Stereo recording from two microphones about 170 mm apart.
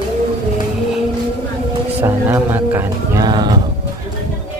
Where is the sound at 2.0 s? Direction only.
15° right (ahead or behind).